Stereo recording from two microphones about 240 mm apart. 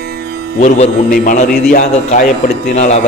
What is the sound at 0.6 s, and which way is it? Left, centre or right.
Mantra, left.